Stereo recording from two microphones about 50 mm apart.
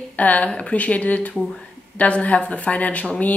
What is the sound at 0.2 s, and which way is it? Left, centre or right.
Speech, left.